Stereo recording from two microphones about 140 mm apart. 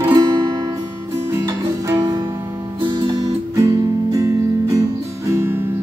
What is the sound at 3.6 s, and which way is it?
Music, 25° right (ahead or behind).